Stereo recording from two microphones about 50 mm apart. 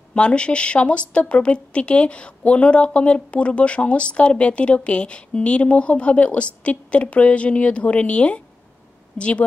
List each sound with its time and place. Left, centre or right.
0.1 s a woman's voice: left